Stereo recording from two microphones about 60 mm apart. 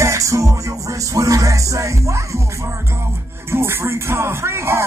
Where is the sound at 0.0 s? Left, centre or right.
Right.